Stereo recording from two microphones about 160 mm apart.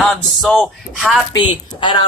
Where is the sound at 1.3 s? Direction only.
25° left (ahead or behind).